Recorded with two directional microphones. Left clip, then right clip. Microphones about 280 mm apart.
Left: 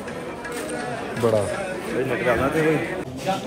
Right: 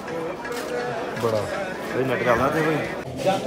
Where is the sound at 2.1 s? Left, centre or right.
Right.